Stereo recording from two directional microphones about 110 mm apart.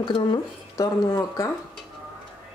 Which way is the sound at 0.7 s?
30° left (ahead or behind).